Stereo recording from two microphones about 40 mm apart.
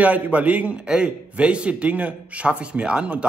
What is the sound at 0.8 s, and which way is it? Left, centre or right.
Speech, right.